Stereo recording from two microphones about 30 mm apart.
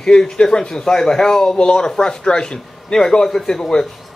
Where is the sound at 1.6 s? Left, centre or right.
Left.